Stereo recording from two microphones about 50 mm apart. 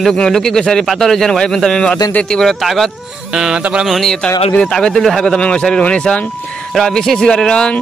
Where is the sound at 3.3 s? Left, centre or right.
Centre.